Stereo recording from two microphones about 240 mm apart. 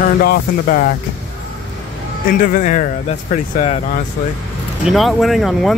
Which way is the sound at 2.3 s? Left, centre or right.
Left.